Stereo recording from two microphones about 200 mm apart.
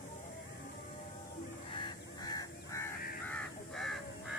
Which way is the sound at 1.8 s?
20° left (ahead or behind).